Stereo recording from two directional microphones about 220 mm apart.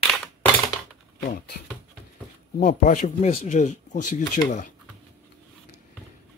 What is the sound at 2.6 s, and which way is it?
Speech, 40° left (ahead or behind).